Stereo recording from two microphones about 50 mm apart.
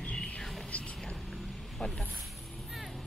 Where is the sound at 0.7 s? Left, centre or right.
Left.